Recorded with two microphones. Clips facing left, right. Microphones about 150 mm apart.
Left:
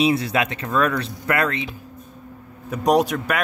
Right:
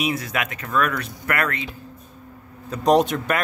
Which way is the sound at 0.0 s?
30° left (ahead or behind).